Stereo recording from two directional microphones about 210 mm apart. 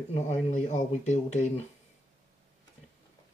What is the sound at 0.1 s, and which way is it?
Speech, 35° left (ahead or behind).